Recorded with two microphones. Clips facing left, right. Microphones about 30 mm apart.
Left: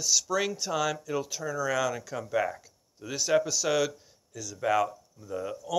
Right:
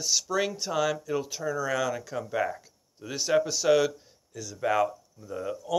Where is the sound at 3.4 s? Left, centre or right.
Right.